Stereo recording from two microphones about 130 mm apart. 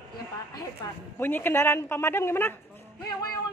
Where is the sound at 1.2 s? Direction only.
15° left (ahead or behind).